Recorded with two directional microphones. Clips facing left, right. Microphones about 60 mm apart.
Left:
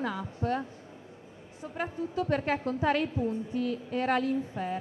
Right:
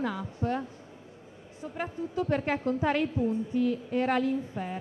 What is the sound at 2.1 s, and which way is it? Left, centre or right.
Speech, right.